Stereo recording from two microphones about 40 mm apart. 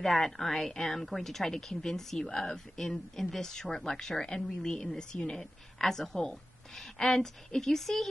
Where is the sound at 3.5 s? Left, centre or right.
Centre.